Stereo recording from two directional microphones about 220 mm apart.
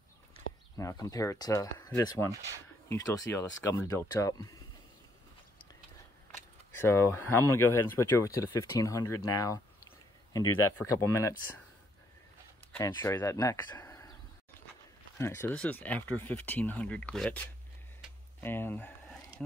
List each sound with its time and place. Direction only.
0.7 s speech: 15° left (ahead or behind)
6.8 s speech: 10° left (ahead or behind)
12.7 s speech: 10° left (ahead or behind)
15.1 s speech: 10° left (ahead or behind)
18.4 s speech: 10° left (ahead or behind)